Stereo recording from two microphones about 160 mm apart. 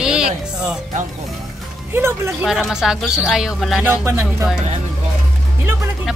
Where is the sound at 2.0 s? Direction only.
15° right (ahead or behind).